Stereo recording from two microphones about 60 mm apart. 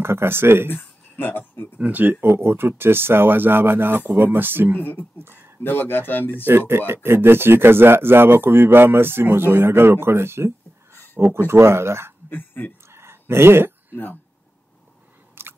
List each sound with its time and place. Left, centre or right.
0.0 s speech: right
0.7 s speech: left
1.8 s speech: right
2.2 s speech: right
4.7 s speech: left
6.4 s speech: right
12.3 s speech: left
12.9 s a sound: right
15.4 s biting: right